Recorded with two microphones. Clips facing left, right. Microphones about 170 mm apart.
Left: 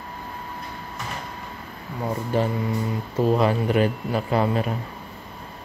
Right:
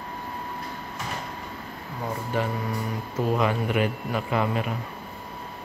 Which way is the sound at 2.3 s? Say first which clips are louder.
Left 4 dB; 35° left (ahead or behind).